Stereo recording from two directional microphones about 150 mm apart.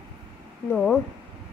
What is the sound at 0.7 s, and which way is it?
Speech, 5° left (ahead or behind).